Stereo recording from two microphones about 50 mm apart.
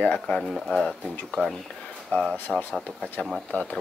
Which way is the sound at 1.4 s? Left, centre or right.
Left.